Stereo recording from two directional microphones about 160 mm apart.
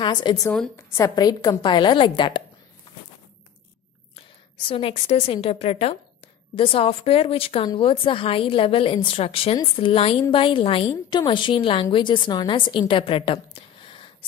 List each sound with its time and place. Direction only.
0.0 s speech: 30° left (ahead or behind)
0.5 s a woman's voice: 10° left (ahead or behind); by 2.4 s 30° left (ahead or behind)
4.6 s a woman's voice: 35° left (ahead or behind)